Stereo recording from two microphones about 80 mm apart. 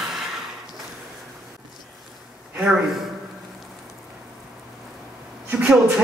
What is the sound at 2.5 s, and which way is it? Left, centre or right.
Speech, centre.